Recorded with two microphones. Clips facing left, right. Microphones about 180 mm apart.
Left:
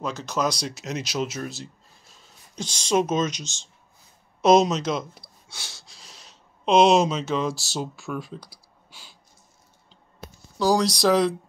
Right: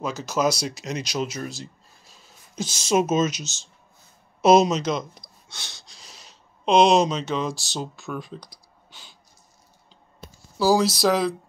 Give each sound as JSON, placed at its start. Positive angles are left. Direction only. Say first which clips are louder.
{"t": 0.0, "sound": "speech", "louder": "right 2 dB", "side_deg": -5}
{"t": 10.6, "sound": "speech", "louder": "right 1 dB", "side_deg": -5}